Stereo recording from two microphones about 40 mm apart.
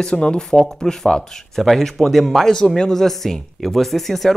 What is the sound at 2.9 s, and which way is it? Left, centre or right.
Speech, centre.